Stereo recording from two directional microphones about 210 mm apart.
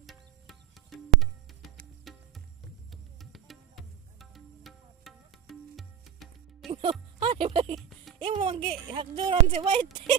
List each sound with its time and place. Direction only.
0.0 s music: centre (ahead or behind)
6.7 s speech: 25° right (ahead or behind)